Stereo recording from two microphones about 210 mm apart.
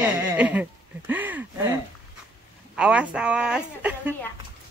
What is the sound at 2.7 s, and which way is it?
Speech, 5° right (ahead or behind).